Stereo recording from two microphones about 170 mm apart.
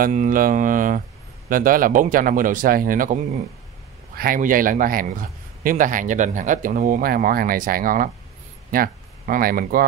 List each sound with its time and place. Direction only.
0.0 s speech: 50° right (ahead or behind)
4.2 s speech: 55° right (ahead or behind)